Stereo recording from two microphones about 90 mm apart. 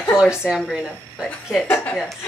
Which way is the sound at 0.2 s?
10° right (ahead or behind).